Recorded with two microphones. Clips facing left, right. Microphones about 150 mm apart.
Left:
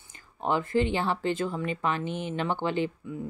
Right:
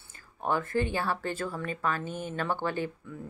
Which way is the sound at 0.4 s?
20° left (ahead or behind).